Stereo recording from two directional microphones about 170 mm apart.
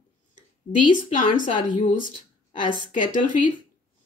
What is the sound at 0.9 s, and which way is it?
Speech, 50° left (ahead or behind).